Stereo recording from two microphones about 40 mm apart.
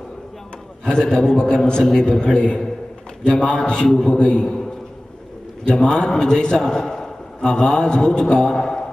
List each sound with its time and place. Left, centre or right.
1.0 s a man's voice: centre
5.7 s a man's voice: left